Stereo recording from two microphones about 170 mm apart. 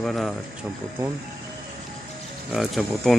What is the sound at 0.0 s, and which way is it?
Speech, centre (ahead or behind).